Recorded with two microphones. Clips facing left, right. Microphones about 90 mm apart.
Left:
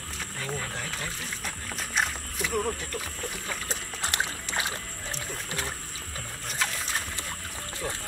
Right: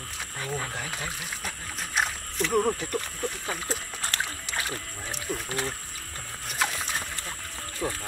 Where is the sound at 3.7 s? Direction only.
20° left (ahead or behind).